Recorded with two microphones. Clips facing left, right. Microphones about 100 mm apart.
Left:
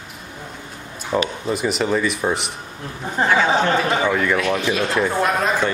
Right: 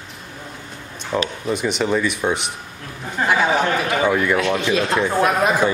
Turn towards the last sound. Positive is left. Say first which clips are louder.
# right 2 dB
turn(degrees=-10)  # may be behind; listen again after turning